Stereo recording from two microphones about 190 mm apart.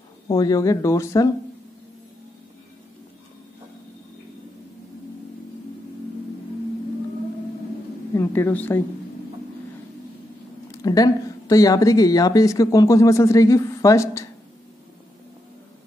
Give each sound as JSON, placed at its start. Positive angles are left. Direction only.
{"t": 0.3, "sound": "speech", "side_deg": 20}
{"t": 8.1, "sound": "a woman's voice", "side_deg": 10}
{"t": 10.7, "sound": "speech", "side_deg": 20}